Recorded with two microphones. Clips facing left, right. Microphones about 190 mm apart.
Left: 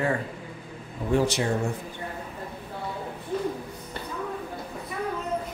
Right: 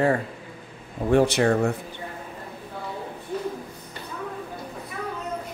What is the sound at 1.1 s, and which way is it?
Speech, 60° right (ahead or behind).